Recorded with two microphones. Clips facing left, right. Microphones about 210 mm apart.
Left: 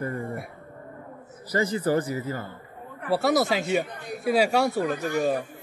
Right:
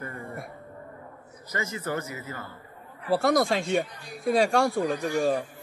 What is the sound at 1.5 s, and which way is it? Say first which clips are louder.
Speech: left 8 dB; 30° left (ahead or behind).